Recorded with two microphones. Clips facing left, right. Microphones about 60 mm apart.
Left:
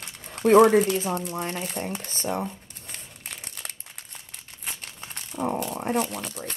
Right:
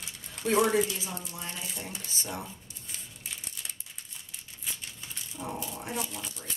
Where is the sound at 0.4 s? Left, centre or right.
Left.